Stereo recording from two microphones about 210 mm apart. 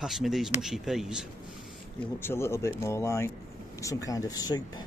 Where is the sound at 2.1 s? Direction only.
10° left (ahead or behind).